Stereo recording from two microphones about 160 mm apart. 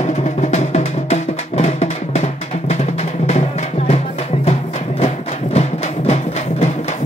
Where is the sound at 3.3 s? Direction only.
45° left (ahead or behind).